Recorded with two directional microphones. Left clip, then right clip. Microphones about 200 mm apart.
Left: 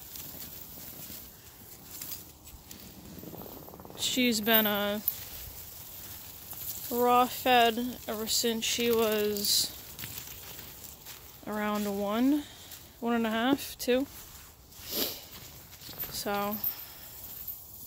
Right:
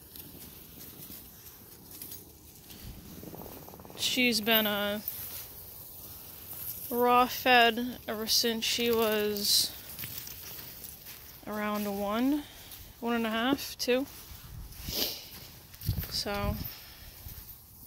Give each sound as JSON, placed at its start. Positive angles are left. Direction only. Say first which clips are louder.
{"t": 3.9, "sound": "speech", "louder": "right 1 dB", "side_deg": 20}
{"t": 6.9, "sound": "speech", "louder": "even", "side_deg": 0}
{"t": 11.4, "sound": "speech", "louder": "left 1 dB", "side_deg": 15}
{"t": 14.9, "sound": "dog", "louder": "right 1 dB", "side_deg": 25}
{"t": 16.1, "sound": "a sound", "louder": "left 1 dB", "side_deg": 20}